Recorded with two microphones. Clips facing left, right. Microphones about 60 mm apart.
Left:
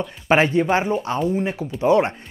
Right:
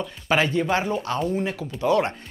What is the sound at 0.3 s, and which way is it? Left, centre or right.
Speech, left.